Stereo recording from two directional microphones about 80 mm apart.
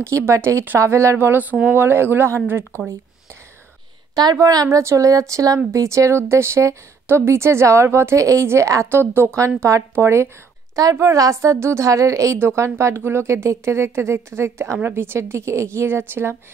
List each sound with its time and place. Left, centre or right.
0.0 s speech: right
4.1 s speech: right
4.6 s speech: right